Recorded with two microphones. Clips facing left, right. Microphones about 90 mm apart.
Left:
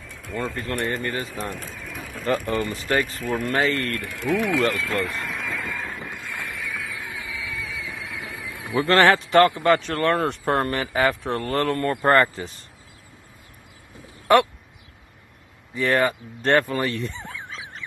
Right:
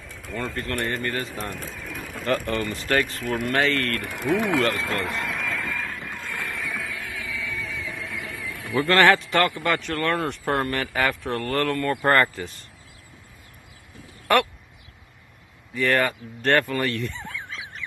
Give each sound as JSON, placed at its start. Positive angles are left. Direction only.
{"t": 0.0, "sound": "pigeon", "side_deg": 0}
{"t": 0.7, "sound": "speech", "side_deg": 5}
{"t": 3.5, "sound": "speech", "side_deg": 15}
{"t": 4.0, "sound": "speech", "side_deg": -20}
{"t": 4.6, "sound": "speech", "side_deg": -35}
{"t": 5.2, "sound": "a sound", "side_deg": 0}
{"t": 5.6, "sound": "vehicle", "side_deg": 10}
{"t": 6.6, "sound": "a sound", "side_deg": 0}
{"t": 6.9, "sound": "a sound", "side_deg": 20}
{"t": 7.2, "sound": "music", "side_deg": 5}
{"t": 8.4, "sound": "a sound", "side_deg": 15}
{"t": 8.9, "sound": "speech", "side_deg": 30}
{"t": 14.2, "sound": "speech", "side_deg": 20}
{"t": 15.7, "sound": "speech", "side_deg": 20}